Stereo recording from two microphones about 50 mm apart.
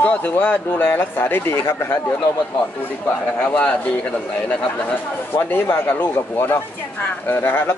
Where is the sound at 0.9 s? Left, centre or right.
Left.